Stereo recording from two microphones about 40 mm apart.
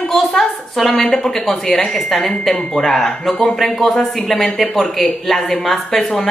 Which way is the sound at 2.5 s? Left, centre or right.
Centre.